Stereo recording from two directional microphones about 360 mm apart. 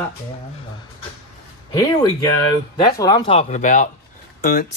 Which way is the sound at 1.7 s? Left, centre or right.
Centre.